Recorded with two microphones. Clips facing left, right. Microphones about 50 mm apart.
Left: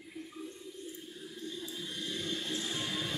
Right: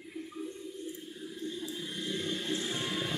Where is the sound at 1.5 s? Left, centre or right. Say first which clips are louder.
Right 2 dB; centre.